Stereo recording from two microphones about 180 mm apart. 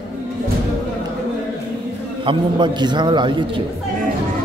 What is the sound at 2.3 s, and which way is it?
A man's voice, 25° right (ahead or behind).